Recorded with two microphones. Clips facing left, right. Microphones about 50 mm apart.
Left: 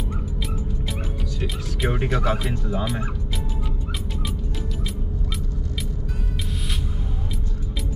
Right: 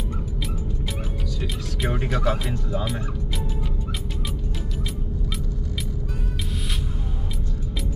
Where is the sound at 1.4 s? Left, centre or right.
Centre.